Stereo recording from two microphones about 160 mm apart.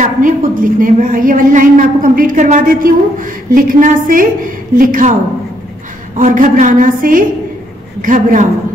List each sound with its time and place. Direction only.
0.0 s a woman's voice: 60° right (ahead or behind)
6.1 s a woman's voice: 55° right (ahead or behind)